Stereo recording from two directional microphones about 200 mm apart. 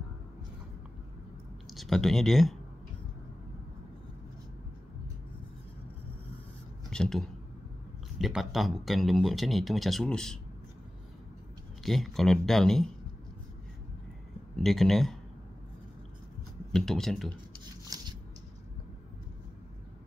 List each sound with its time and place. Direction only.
1.7 s speech: centre (ahead or behind)
6.9 s speech: centre (ahead or behind)
11.8 s speech: centre (ahead or behind)
14.6 s speech: centre (ahead or behind)
16.7 s speech: centre (ahead or behind)
17.9 s a sound: 15° right (ahead or behind)